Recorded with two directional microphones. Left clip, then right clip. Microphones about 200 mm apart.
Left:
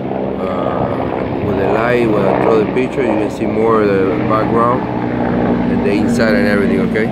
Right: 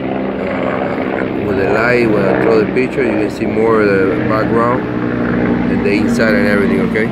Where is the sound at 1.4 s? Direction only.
Centre (ahead or behind).